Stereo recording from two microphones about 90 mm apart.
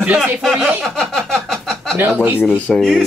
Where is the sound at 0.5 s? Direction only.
10° right (ahead or behind).